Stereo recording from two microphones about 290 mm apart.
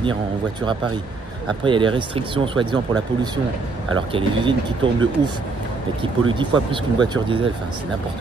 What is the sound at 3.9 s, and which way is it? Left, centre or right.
Speech, centre.